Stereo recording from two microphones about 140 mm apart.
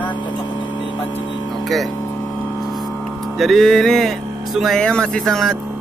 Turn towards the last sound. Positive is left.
turn(degrees=0)  # may be behind; listen again after turning